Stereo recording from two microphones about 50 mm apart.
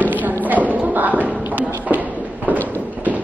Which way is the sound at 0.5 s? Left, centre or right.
Right.